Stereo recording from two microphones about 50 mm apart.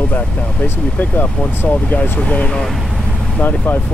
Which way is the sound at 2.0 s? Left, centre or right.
Left.